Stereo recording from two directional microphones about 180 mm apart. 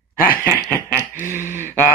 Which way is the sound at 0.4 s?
15° left (ahead or behind).